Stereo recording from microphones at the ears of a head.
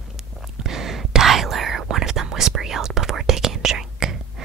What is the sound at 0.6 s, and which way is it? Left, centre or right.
Whispering, right.